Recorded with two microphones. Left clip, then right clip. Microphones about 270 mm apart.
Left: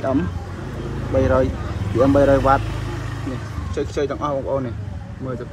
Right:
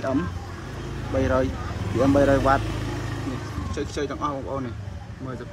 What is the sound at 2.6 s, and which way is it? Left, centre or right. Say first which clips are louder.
Vehicle: left 1 dB; right.